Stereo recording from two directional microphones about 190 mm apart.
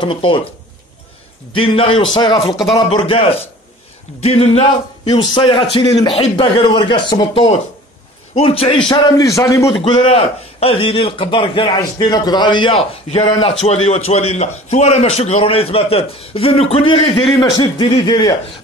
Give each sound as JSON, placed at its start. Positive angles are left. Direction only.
{"t": 0.0, "sound": "a man's voice", "side_deg": 25}
{"t": 1.5, "sound": "a man's voice", "side_deg": 30}
{"t": 8.9, "sound": "a man's voice", "side_deg": 20}
{"t": 9.8, "sound": "a man's voice", "side_deg": 25}